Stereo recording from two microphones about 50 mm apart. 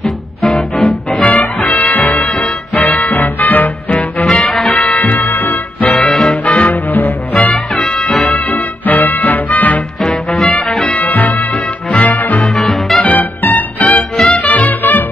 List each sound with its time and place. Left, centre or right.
0.0 s music: centre
1.2 s music: left
4.3 s music: centre
4.9 s music: left
6.0 s music: centre
6.4 s music: left
7.5 s music: centre
8.3 s music: left
10.0 s music: centre
10.8 s music: left
12.5 s music: centre
13.0 s music: left
14.1 s music: centre
14.4 s music: left